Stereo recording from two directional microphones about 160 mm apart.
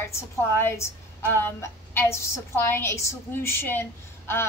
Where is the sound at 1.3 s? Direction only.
15° left (ahead or behind).